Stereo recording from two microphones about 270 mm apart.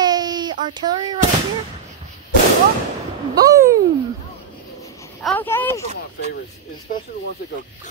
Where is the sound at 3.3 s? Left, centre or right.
Centre.